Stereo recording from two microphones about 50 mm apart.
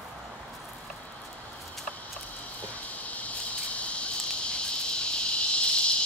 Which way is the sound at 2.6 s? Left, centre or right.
Left.